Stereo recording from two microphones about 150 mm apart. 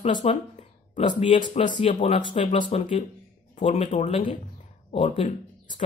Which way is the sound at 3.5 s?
50° left (ahead or behind).